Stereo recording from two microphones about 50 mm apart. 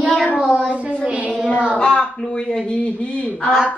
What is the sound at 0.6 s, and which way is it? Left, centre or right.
Speech, right.